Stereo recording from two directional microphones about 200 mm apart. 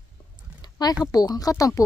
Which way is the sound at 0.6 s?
20° left (ahead or behind).